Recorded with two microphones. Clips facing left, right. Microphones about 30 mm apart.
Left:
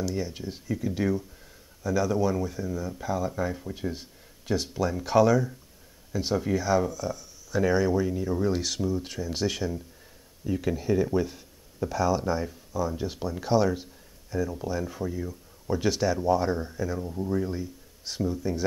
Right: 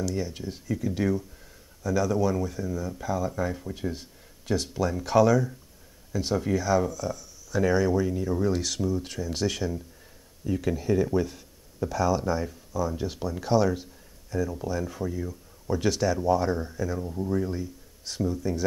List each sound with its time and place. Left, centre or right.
0.0 s speech: centre